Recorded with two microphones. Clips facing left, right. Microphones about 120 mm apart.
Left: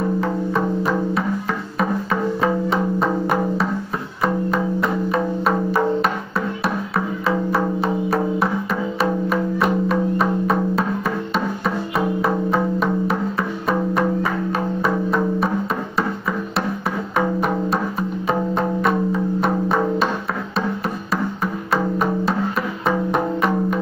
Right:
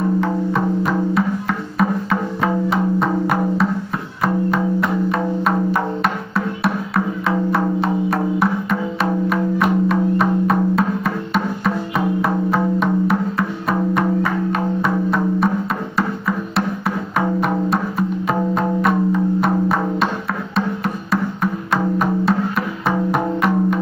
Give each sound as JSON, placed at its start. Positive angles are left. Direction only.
{"t": 0.2, "sound": "music", "side_deg": 0}